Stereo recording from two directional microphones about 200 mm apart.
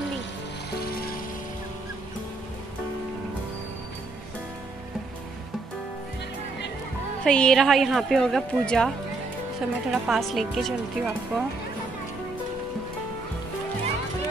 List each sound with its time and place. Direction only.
7.2 s speech: 5° left (ahead or behind)